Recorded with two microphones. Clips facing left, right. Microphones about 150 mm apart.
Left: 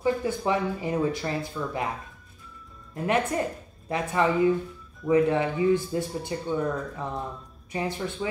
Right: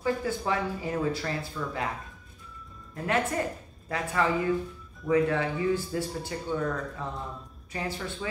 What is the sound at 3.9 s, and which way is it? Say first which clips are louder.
A man's voice: left 3 dB; 20° left (ahead or behind).